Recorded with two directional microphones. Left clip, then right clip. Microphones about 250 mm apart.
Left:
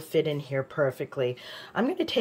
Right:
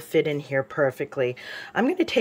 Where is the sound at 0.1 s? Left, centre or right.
Centre.